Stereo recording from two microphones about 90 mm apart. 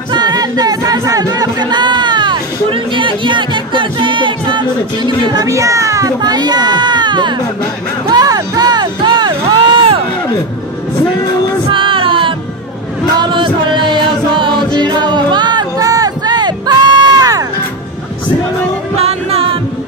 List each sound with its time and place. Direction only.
0.1 s music: 50° right (ahead or behind)
8.1 s music: 45° right (ahead or behind); by 9.9 s 60° right (ahead or behind)
11.7 s music: 70° right (ahead or behind); by 17.5 s 45° right (ahead or behind)
19.3 s music: 90° right